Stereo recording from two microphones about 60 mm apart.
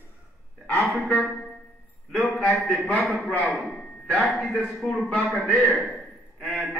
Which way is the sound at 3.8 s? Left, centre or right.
Centre.